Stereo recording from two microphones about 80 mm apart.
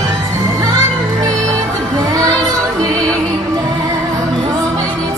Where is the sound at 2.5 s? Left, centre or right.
Right.